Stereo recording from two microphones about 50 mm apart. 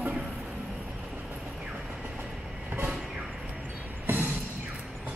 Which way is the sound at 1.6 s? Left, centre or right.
Centre.